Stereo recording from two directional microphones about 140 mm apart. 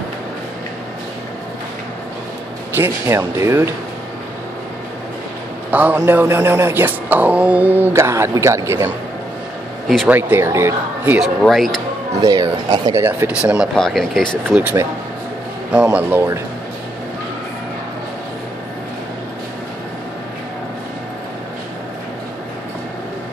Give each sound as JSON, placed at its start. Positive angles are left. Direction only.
{"t": 2.7, "sound": "speech", "side_deg": -15}
{"t": 5.7, "sound": "speech", "side_deg": -10}
{"t": 10.0, "sound": "speech", "side_deg": -10}
{"t": 11.4, "sound": "speech", "side_deg": 0}
{"t": 12.2, "sound": "speech", "side_deg": -25}
{"t": 13.0, "sound": "speech", "side_deg": -10}
{"t": 13.7, "sound": "speech", "side_deg": 5}
{"t": 14.5, "sound": "speech", "side_deg": -10}